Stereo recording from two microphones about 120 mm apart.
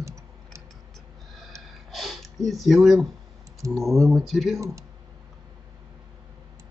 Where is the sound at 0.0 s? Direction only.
25° right (ahead or behind).